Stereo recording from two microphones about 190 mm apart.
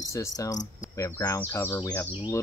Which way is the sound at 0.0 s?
15° left (ahead or behind).